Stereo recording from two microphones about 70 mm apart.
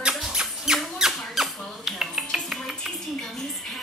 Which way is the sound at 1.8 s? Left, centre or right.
Centre.